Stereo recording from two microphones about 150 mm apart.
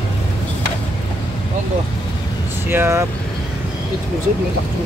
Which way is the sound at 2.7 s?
15° right (ahead or behind).